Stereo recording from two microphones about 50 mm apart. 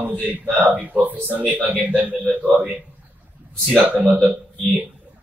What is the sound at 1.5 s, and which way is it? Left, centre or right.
A man's voice, right.